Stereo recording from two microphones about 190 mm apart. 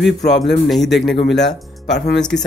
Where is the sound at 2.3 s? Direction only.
60° left (ahead or behind).